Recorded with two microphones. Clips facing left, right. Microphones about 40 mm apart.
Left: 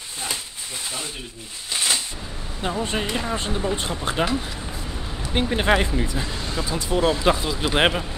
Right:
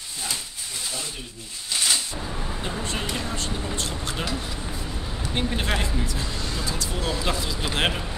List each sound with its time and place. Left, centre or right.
1.7 s a sound: centre
2.8 s speech: left
4.5 s vehicle: centre
5.3 s speech: left